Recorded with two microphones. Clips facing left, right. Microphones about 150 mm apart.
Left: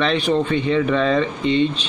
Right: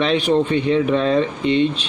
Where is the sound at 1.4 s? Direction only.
60° right (ahead or behind).